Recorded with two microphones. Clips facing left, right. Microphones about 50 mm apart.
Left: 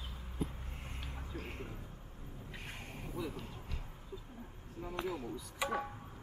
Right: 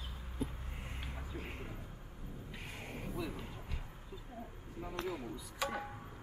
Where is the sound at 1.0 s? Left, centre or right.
Centre.